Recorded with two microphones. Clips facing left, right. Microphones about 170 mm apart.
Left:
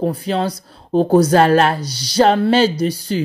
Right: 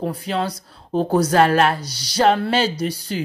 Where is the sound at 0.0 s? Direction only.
30° left (ahead or behind).